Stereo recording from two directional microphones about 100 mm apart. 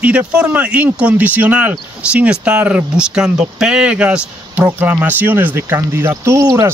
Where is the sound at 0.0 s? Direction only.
15° right (ahead or behind).